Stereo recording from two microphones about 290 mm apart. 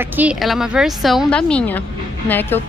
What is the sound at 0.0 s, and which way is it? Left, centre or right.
Speech, centre.